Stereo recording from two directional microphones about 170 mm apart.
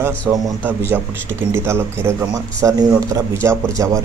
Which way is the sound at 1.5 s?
15° right (ahead or behind).